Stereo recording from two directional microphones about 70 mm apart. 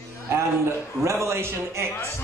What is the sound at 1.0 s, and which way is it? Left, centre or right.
Speech, right.